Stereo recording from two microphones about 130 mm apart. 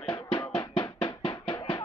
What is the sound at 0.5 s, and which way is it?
Drum, 35° left (ahead or behind).